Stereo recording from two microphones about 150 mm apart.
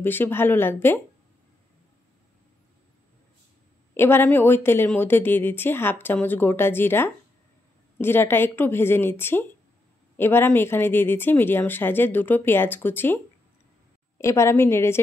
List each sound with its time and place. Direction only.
0.0 s speech: 15° left (ahead or behind)
3.9 s speech: 15° left (ahead or behind)